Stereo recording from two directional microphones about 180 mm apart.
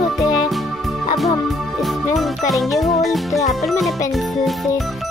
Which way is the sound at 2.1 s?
Centre (ahead or behind).